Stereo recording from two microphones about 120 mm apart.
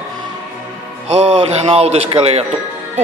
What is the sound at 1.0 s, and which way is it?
A man's voice, 60° right (ahead or behind).